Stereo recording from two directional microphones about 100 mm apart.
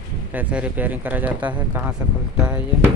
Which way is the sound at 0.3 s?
15° right (ahead or behind).